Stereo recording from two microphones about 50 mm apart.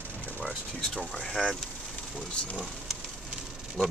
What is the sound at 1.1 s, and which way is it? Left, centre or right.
Speech, centre.